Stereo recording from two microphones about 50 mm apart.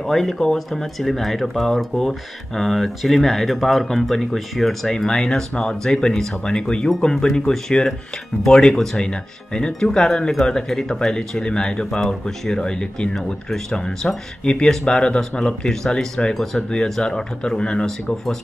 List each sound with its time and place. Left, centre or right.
0.0 s speech: centre
4.8 s speech: centre